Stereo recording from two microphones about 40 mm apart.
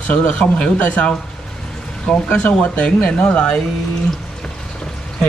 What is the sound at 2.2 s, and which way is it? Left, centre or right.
Speech, left.